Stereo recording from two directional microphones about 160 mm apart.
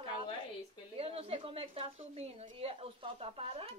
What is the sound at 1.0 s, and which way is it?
A woman's voice, 35° right (ahead or behind).